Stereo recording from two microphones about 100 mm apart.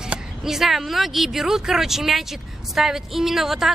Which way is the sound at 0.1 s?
5° right (ahead or behind).